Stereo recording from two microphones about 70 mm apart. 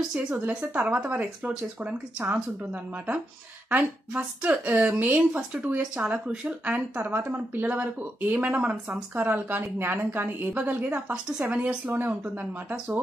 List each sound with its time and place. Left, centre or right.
0.3 s speech: right
3.7 s speech: right